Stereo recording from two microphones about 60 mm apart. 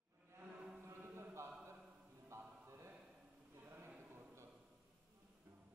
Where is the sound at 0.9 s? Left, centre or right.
Right.